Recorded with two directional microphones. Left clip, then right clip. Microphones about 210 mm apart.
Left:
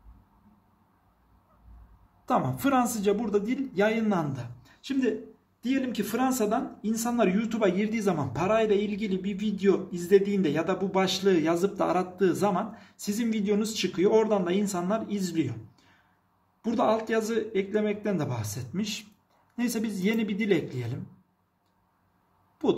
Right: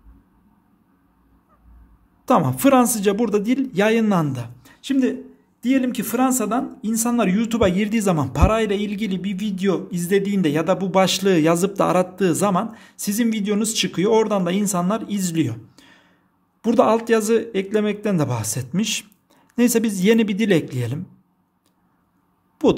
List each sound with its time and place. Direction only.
2.2 s speech: 40° right (ahead or behind)